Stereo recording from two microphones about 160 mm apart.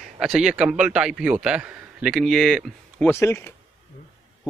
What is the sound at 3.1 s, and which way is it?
Speech, 15° left (ahead or behind).